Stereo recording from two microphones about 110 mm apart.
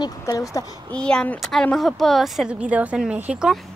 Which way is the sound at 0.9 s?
10° left (ahead or behind).